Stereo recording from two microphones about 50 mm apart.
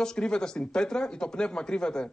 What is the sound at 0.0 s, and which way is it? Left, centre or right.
Speech, centre.